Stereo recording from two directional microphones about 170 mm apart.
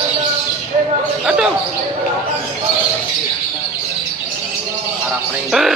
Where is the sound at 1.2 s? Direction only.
5° right (ahead or behind).